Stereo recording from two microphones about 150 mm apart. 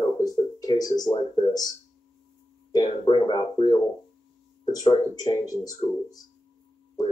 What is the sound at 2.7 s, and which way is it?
A woman's voice, 30° left (ahead or behind).